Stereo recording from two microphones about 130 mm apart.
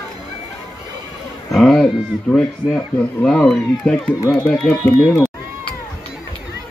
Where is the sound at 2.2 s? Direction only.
5° left (ahead or behind).